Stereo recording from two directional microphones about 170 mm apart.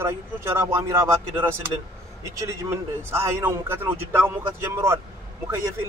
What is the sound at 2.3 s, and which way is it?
Speech, 15° right (ahead or behind).